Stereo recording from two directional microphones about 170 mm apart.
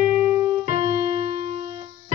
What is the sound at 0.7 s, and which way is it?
Keyboard, 40° right (ahead or behind).